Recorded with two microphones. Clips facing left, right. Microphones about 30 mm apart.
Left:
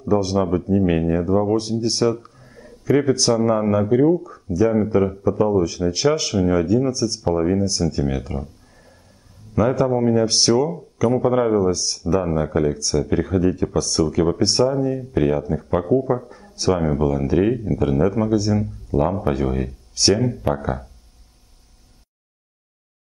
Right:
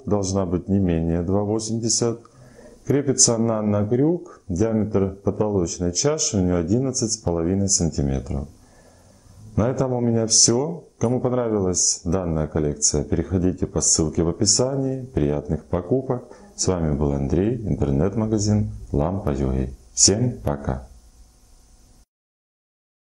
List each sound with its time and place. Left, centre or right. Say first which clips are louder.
0.0 s speech: left 3 dB; left
9.5 s speech: left 4 dB; left